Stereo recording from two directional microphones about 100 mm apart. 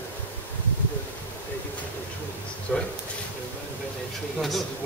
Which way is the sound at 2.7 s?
15° left (ahead or behind).